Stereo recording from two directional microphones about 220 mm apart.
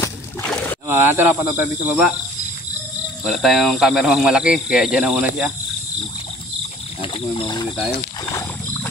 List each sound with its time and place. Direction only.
0.0 s a sound: 10° left (ahead or behind)
0.8 s speech: 10° right (ahead or behind)
3.3 s speech: centre (ahead or behind)
7.0 s speech: 25° left (ahead or behind)